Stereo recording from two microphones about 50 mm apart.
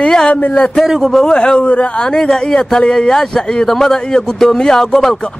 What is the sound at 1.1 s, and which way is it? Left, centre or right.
A man's voice, centre.